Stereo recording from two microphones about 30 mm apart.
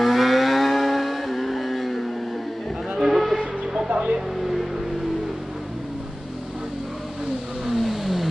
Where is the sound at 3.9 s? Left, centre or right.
Right.